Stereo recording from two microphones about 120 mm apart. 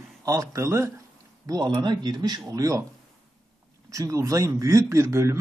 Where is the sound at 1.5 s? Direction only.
35° right (ahead or behind).